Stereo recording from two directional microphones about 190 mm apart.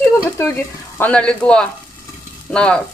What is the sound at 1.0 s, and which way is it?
Speech, 5° left (ahead or behind).